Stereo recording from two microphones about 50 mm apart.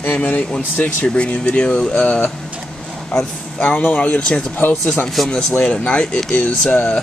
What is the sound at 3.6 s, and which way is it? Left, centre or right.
Speech, left.